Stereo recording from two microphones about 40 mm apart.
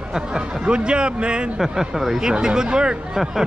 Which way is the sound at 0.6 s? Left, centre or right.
Right.